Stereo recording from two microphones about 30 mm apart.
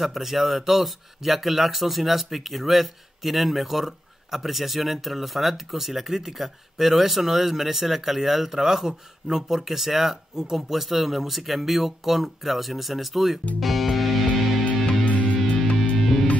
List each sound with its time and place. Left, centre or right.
0.0 s speech: centre
13.6 s music: centre
15.0 s music: left
15.3 s music: left
16.0 s music: centre